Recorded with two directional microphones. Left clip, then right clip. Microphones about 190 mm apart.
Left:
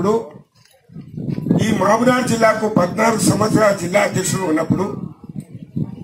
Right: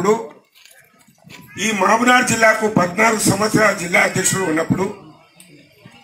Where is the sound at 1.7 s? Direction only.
30° left (ahead or behind).